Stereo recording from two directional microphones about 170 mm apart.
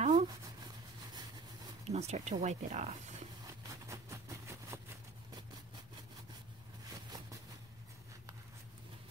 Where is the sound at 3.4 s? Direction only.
20° right (ahead or behind).